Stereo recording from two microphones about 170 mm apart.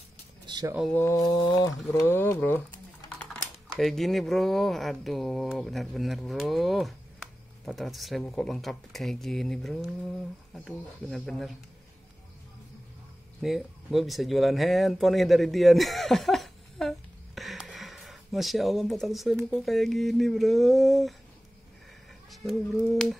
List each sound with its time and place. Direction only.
0.5 s a sound: 25° right (ahead or behind)
0.9 s speech: 15° left (ahead or behind)
3.8 s speech: centre (ahead or behind)
13.4 s speech: centre (ahead or behind)
22.3 s speech: centre (ahead or behind)